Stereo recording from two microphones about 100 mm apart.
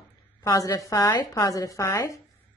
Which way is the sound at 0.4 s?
35° left (ahead or behind).